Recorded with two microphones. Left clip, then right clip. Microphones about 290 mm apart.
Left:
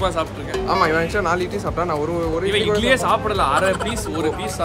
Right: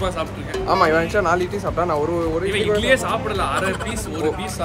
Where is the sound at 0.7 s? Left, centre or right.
Centre.